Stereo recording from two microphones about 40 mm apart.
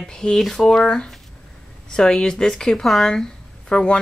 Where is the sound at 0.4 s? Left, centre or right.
Centre.